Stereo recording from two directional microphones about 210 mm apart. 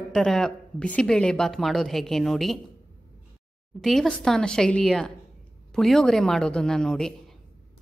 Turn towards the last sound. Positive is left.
turn(degrees=5)  # may be behind; listen again after turning